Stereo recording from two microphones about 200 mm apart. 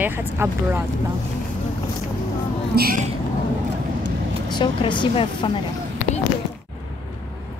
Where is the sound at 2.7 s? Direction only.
45° right (ahead or behind).